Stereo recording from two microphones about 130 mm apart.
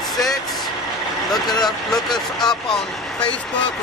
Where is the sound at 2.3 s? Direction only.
5° left (ahead or behind).